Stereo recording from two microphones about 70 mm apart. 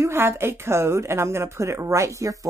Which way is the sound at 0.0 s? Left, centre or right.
Right.